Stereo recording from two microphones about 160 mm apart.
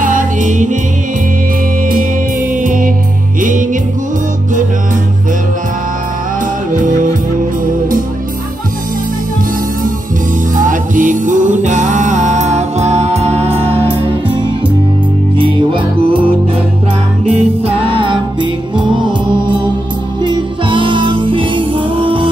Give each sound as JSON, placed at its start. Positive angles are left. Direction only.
{"t": 0.0, "sound": "music", "side_deg": -55}
{"t": 2.6, "sound": "music", "side_deg": -55}
{"t": 10.5, "sound": "music", "side_deg": -55}
{"t": 15.3, "sound": "music", "side_deg": -30}
{"t": 17.3, "sound": "music", "side_deg": -35}